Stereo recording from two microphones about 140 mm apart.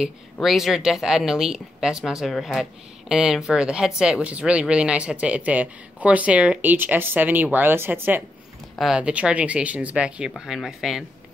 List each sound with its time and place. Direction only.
0.0 s a woman's voice: centre (ahead or behind)
8.7 s a woman's voice: 5° right (ahead or behind)